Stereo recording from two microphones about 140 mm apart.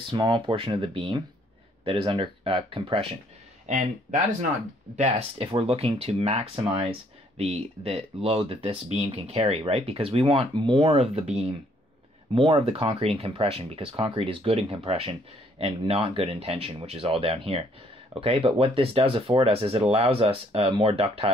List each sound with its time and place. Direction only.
0.1 s speech: 35° right (ahead or behind)
3.6 s speech: 60° right (ahead or behind)
4.9 s speech: 50° right (ahead or behind)